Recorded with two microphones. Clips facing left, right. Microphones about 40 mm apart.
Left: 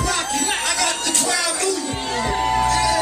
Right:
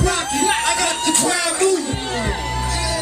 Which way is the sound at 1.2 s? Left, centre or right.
Centre.